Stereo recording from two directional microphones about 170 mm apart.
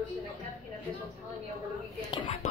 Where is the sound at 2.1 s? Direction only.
30° left (ahead or behind).